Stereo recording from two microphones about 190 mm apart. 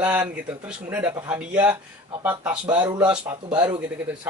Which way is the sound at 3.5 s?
25° right (ahead or behind).